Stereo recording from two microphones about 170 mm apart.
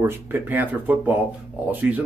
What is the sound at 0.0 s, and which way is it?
A man's voice, 10° right (ahead or behind).